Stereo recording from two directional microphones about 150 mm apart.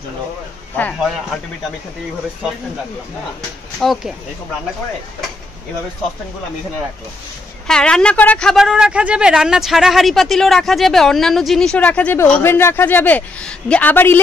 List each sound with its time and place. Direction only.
0.7 s speech: 10° left (ahead or behind)
3.8 s speech: centre (ahead or behind)
7.6 s speech: 5° left (ahead or behind)